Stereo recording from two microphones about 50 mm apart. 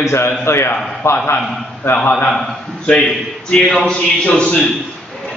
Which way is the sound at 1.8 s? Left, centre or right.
Left.